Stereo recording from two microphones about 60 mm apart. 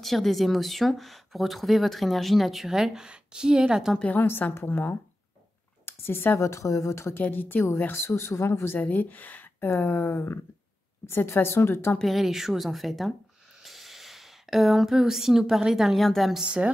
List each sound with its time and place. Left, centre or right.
0.0 s speech: centre
4.0 s a woman's voice: left
7.2 s speech: left
7.9 s speech: left
8.7 s speech: left
12.0 s speech: centre
16.4 s a woman's voice: centre